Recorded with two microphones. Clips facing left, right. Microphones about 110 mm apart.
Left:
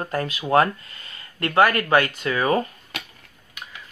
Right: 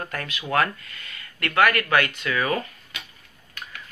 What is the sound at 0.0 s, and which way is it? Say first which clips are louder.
Speech: left 6 dB; 30° left (ahead or behind).